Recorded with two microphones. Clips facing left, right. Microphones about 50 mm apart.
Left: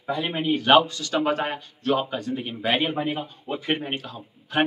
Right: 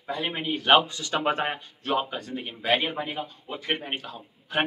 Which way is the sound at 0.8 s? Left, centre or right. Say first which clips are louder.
Left 2 dB; right.